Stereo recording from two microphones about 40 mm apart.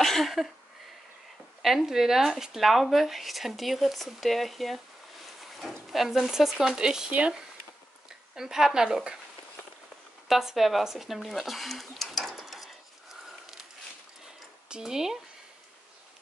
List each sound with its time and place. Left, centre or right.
0.0 s a sound: centre
1.6 s speech: centre
6.6 s a woman's voice: centre
7.1 s speech: right
8.4 s a woman's voice: centre
10.2 s speech: centre
12.4 s a sound: centre
14.8 s a woman's voice: centre